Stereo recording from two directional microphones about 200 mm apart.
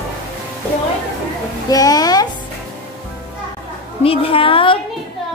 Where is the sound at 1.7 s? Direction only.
20° left (ahead or behind).